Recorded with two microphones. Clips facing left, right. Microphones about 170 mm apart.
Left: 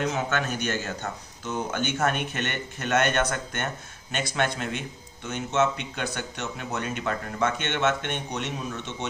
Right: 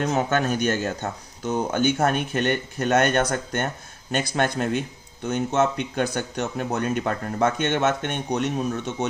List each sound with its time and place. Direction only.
0.0 s speech: 45° right (ahead or behind)